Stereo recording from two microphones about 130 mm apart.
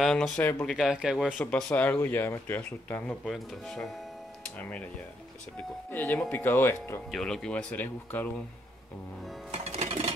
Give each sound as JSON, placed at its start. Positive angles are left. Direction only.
{"t": 0.0, "sound": "speech", "side_deg": 0}
{"t": 0.4, "sound": "speech", "side_deg": 10}
{"t": 1.4, "sound": "speech", "side_deg": 10}
{"t": 3.3, "sound": "speech", "side_deg": 5}
{"t": 6.1, "sound": "speech", "side_deg": 5}
{"t": 6.4, "sound": "speech", "side_deg": 15}
{"t": 7.1, "sound": "speech", "side_deg": 5}
{"t": 9.5, "sound": "music", "side_deg": -55}